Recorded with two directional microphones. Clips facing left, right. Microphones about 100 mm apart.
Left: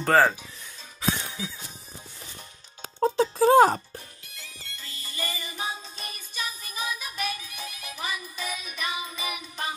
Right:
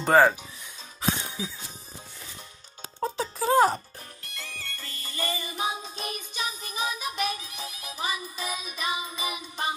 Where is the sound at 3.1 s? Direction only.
35° left (ahead or behind).